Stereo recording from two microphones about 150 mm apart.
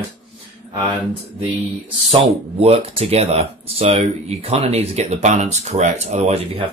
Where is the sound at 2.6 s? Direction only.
40° right (ahead or behind).